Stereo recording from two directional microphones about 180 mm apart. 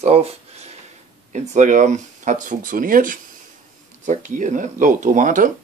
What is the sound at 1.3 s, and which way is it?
Speech, 40° right (ahead or behind).